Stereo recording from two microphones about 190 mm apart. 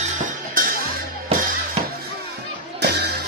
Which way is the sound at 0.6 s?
45° right (ahead or behind).